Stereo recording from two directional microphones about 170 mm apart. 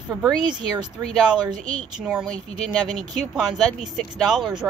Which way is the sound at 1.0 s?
5° left (ahead or behind).